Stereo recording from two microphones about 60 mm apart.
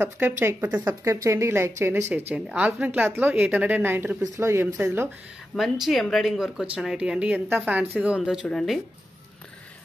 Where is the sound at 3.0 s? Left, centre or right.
Right.